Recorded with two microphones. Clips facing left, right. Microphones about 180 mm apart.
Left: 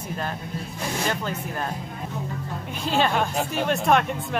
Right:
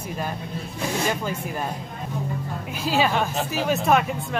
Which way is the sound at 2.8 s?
5° right (ahead or behind).